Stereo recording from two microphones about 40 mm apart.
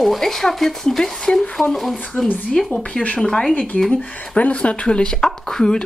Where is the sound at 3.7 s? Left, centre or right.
Left.